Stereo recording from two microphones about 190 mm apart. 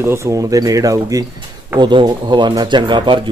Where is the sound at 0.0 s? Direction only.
15° right (ahead or behind).